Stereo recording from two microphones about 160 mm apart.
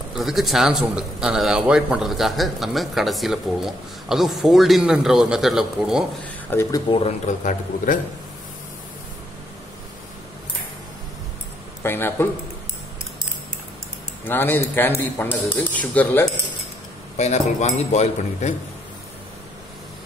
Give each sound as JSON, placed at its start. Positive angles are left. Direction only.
{"t": 0.2, "sound": "a man's voice", "side_deg": 0}
{"t": 6.5, "sound": "a man's voice", "side_deg": 15}
{"t": 6.9, "sound": "speech", "side_deg": 40}
{"t": 11.8, "sound": "a man's voice", "side_deg": 15}
{"t": 14.2, "sound": "a man's voice", "side_deg": 10}
{"t": 17.2, "sound": "speech", "side_deg": 45}